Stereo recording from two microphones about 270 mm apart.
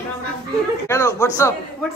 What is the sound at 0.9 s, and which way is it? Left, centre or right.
Speech, centre.